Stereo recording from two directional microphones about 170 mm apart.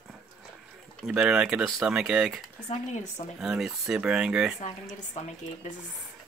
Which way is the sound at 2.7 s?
45° left (ahead or behind).